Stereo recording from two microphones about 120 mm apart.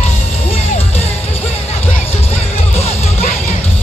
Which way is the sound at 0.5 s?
55° left (ahead or behind).